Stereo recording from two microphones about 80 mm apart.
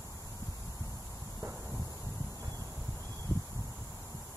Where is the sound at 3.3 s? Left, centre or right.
Left.